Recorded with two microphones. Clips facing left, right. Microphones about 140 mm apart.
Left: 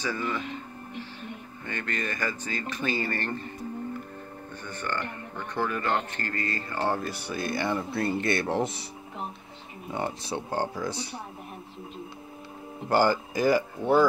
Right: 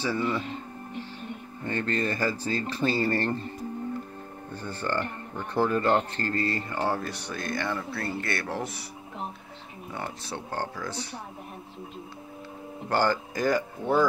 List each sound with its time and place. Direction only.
0.0 s speech: 30° right (ahead or behind)
1.6 s speech: 35° right (ahead or behind)
4.6 s speech: 30° right (ahead or behind)
6.7 s speech: 10° right (ahead or behind)
7.0 s speech: 5° left (ahead or behind); by 8.8 s 25° left (ahead or behind)
9.9 s speech: 15° left (ahead or behind)
12.9 s speech: 10° left (ahead or behind)